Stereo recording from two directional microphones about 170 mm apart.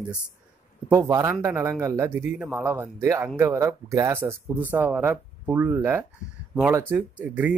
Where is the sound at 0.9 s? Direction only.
20° right (ahead or behind).